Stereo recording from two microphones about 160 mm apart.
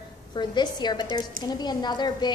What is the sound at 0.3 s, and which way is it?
A woman's voice, 30° left (ahead or behind).